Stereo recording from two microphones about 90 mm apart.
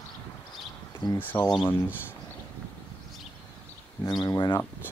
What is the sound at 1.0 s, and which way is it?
Speech, 60° left (ahead or behind).